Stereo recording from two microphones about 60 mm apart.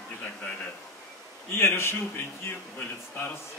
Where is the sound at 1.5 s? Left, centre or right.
Left.